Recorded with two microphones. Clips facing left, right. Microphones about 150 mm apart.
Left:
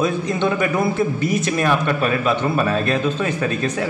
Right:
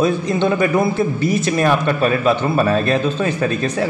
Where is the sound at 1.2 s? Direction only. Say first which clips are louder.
Right 3 dB; 35° right (ahead or behind).